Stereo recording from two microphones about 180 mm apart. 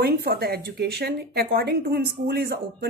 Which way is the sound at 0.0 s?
60° right (ahead or behind).